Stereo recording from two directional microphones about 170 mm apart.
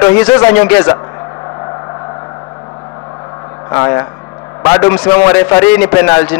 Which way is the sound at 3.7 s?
20° left (ahead or behind).